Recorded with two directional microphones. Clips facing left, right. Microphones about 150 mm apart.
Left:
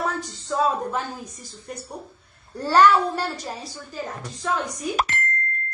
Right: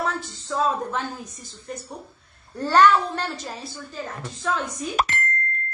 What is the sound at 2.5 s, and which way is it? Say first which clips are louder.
A woman's voice: even; 10° left (ahead or behind).